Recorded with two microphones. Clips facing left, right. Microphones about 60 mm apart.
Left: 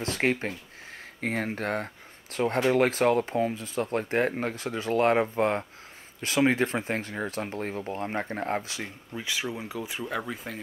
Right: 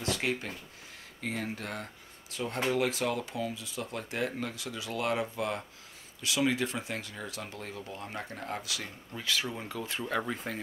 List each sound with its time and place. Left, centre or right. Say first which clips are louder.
0.0 s speech: left 5 dB; left
9.1 s speech: left 1 dB; centre